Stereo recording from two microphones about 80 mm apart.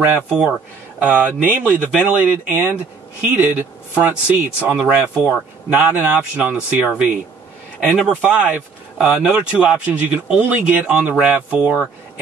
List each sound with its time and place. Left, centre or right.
0.0 s speech: right